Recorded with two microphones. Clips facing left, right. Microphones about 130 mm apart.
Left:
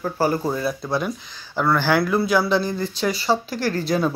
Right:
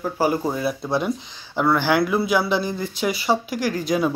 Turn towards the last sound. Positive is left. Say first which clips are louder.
# even
turn(degrees=-15)  # may be behind; listen again after turning